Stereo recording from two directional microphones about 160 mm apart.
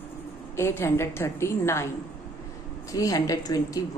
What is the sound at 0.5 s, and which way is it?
A woman's voice, 15° left (ahead or behind).